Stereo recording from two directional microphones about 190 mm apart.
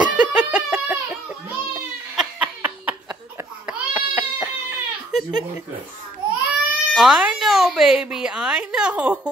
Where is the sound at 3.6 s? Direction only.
10° right (ahead or behind).